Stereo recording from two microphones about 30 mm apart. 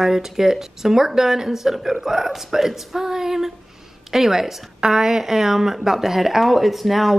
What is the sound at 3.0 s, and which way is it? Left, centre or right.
Speech, centre.